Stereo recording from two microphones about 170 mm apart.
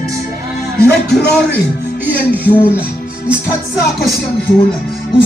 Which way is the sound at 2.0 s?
10° right (ahead or behind).